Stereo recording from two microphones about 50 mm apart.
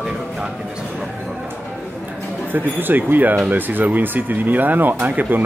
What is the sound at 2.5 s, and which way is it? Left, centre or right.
Speech, right.